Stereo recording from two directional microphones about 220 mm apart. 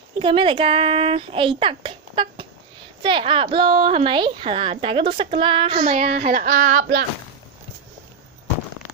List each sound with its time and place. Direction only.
0.2 s a woman's voice: 25° right (ahead or behind); by 7.1 s 40° right (ahead or behind)